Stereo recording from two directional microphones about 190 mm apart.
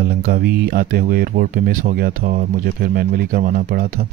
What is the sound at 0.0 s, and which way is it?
Speech, 50° right (ahead or behind).